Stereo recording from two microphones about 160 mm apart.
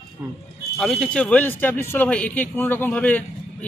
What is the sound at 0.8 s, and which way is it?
A man's voice, centre (ahead or behind).